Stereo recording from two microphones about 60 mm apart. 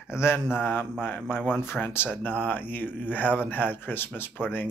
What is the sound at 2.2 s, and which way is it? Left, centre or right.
Speech, left.